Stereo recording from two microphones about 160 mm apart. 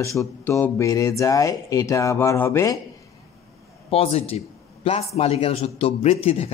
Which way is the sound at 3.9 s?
40° left (ahead or behind).